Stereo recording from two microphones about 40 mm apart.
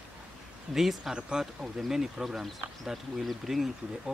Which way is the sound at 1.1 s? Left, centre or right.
Right.